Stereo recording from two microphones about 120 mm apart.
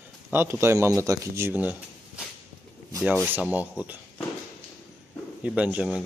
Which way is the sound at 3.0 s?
15° right (ahead or behind).